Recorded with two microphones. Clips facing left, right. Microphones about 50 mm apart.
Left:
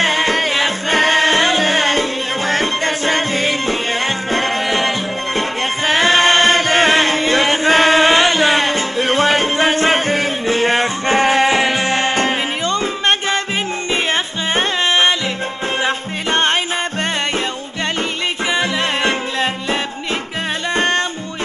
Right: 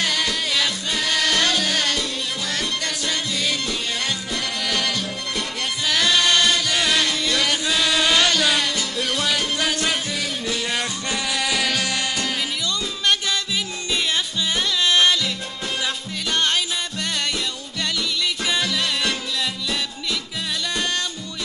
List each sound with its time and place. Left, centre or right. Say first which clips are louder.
0.0 s music: left 8 dB; left
5.9 s chant: left 6 dB; left
14.5 s music: left 5 dB; left
18.5 s music: left 7 dB; left